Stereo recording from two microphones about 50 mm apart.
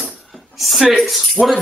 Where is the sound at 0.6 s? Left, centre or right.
Centre.